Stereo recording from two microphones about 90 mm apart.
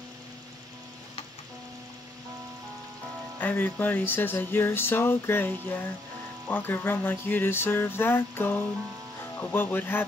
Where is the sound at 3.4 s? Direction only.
20° left (ahead or behind).